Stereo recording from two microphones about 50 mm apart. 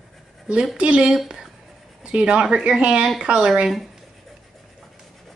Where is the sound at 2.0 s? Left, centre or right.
Centre.